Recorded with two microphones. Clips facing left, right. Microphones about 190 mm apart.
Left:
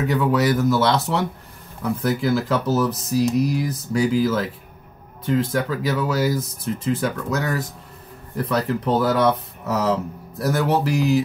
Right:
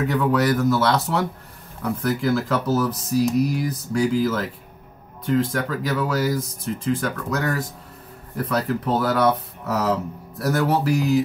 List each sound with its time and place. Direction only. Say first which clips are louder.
0.1 s speech: left 2 dB; 5° left (ahead or behind)